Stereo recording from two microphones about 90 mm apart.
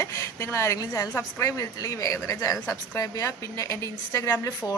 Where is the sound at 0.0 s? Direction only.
30° left (ahead or behind).